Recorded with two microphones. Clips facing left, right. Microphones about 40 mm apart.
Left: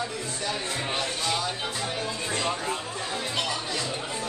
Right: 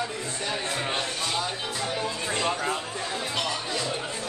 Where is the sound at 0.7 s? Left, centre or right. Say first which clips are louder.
Right 1 dB; centre.